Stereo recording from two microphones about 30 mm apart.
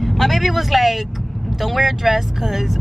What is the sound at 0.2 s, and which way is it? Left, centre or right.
A man's voice, centre.